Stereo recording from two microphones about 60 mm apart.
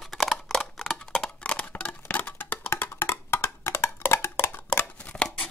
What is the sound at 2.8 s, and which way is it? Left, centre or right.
Wood block, left.